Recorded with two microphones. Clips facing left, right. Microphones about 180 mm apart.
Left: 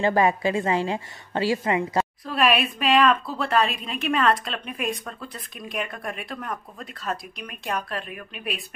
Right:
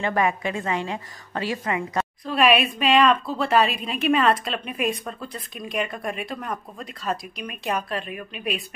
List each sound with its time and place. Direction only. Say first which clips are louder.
0.0 s a woman's voice: left 3 dB; 30° left (ahead or behind)
2.2 s a woman's voice: right 4 dB; centre (ahead or behind)